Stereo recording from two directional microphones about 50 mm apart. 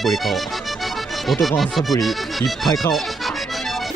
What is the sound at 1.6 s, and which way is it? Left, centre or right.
Speech, centre.